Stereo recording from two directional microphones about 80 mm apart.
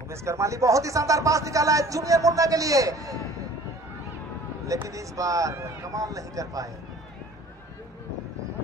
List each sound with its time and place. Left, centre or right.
0.1 s speech: right
4.8 s speech: right